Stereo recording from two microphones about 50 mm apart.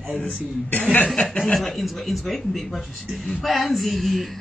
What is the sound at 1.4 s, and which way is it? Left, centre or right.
Speech, centre.